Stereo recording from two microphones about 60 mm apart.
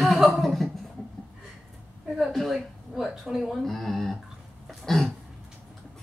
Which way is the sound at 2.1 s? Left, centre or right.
Centre.